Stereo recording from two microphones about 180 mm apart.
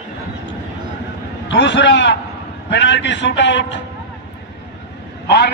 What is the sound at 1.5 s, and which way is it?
A man's voice, 85° left.